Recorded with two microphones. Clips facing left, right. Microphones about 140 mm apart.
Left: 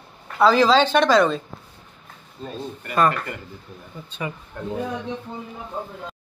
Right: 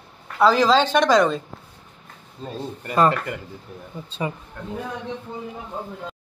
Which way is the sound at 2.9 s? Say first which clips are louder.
Right 1 dB; 20° right (ahead or behind).